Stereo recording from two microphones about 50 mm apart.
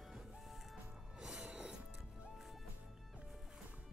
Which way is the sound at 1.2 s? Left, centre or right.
Centre.